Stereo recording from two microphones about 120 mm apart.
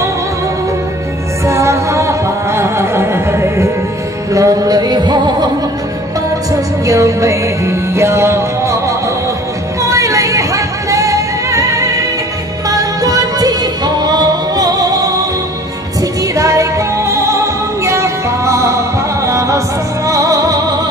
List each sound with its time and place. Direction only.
1.4 s music: 25° right (ahead or behind)
6.5 s music: 25° right (ahead or behind)